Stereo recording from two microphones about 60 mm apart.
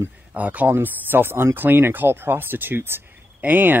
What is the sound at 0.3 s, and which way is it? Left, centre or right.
Speech, right.